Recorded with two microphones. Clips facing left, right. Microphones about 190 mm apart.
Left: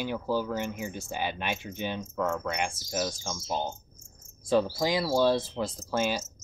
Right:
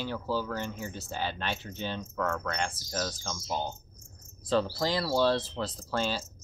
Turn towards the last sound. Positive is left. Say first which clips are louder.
# left 3 dB
turn(degrees=15)  # may be behind; listen again after turning